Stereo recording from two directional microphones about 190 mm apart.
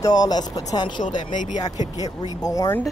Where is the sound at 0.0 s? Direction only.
20° left (ahead or behind).